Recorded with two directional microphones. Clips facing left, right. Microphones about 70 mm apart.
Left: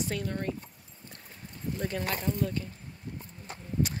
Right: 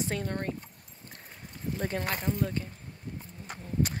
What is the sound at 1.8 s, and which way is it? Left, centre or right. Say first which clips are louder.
Speech: even; right.